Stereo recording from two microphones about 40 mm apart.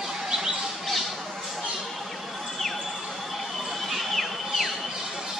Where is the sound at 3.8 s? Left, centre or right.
Centre.